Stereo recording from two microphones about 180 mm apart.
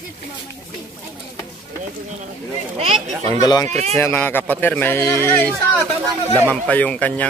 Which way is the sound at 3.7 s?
40° right (ahead or behind).